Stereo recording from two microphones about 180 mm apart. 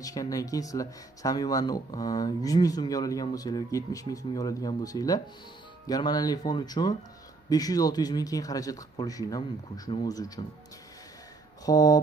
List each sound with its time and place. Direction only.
0.0 s speech: 20° left (ahead or behind)
11.6 s speech: 20° left (ahead or behind)